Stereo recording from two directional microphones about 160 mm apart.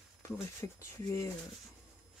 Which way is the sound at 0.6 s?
20° left (ahead or behind).